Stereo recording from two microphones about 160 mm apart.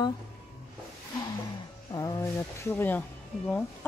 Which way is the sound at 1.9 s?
20° left (ahead or behind).